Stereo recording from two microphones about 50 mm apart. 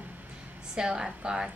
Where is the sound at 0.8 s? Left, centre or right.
Centre.